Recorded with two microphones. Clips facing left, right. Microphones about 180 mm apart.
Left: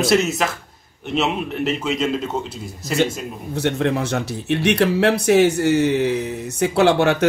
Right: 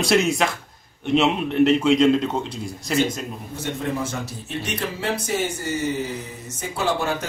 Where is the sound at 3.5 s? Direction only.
75° left (ahead or behind).